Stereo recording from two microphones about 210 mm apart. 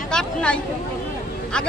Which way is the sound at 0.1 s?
5° left (ahead or behind).